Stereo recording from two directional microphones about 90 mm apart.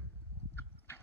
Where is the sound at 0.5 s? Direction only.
25° left (ahead or behind).